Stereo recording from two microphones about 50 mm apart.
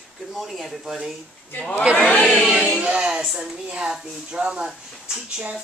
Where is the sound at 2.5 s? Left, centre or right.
Centre.